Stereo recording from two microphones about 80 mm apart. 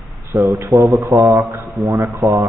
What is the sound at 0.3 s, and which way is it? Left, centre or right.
Speech, centre.